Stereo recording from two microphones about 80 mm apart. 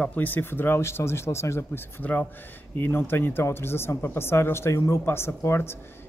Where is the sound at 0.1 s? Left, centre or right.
Left.